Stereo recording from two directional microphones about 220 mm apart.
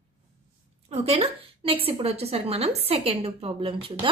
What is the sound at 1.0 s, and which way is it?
A woman's voice, 25° right (ahead or behind).